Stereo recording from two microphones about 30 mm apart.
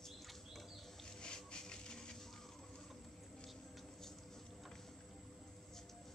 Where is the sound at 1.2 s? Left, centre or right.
Left.